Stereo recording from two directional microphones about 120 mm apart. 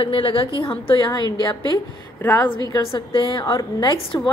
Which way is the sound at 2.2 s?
15° left (ahead or behind).